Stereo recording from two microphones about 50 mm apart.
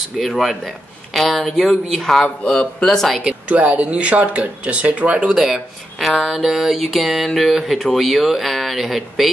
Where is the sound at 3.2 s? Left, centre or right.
Right.